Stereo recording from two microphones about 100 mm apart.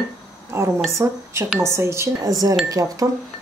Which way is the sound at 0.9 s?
30° right (ahead or behind).